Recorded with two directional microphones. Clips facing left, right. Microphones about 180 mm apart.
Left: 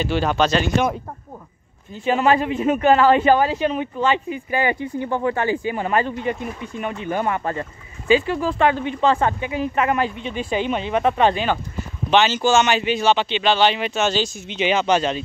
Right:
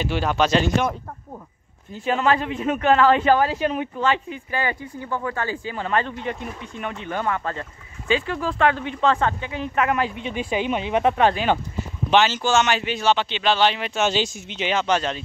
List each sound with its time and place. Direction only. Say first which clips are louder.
0.0 s speech: left 2 dB; 5° right (ahead or behind)
2.0 s speech: left 3 dB; 5° left (ahead or behind)
4.5 s speech: left 5 dB; 15° left (ahead or behind)
8.1 s speech: left 5 dB; 5° left (ahead or behind)
13.9 s speech: left 1 dB; 15° right (ahead or behind)
14.5 s speech: left 4 dB; 5° left (ahead or behind)